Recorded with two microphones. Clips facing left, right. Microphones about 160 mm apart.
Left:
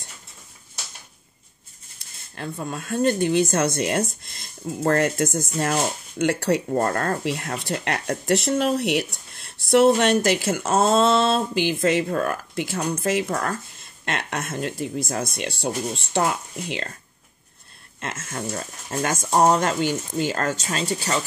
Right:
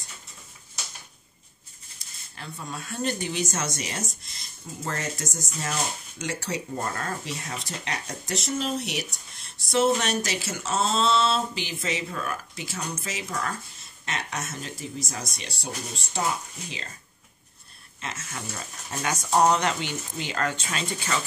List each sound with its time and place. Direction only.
2.3 s speech: 55° left (ahead or behind)
18.0 s speech: 50° left (ahead or behind)